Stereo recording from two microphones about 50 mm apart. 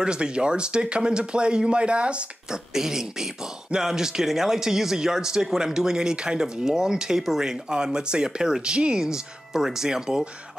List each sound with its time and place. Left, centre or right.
0.0 s speech: centre
2.7 s speech: centre